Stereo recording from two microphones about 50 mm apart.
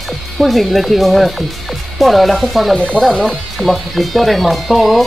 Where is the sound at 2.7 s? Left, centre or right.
Left.